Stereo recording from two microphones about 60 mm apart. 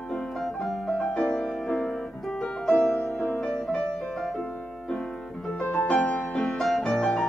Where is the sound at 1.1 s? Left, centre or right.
Centre.